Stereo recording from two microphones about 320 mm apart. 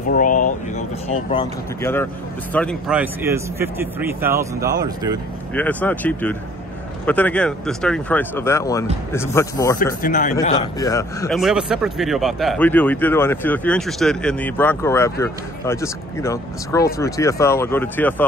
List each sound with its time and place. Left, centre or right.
0.1 s speech: left; by 5.2 s centre
5.5 s speech: centre
10.0 s speech: left; by 18.2 s centre